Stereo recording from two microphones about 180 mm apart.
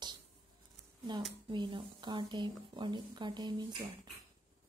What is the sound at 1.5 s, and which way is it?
Speech, 25° right (ahead or behind).